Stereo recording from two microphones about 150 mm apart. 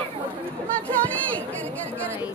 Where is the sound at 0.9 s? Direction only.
10° left (ahead or behind).